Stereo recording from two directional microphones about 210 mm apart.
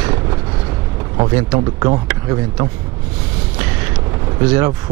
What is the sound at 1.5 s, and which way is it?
A man's voice, 20° right (ahead or behind).